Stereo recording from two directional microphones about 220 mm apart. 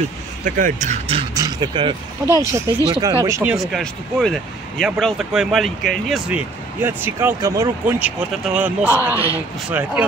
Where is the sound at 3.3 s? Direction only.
15° right (ahead or behind).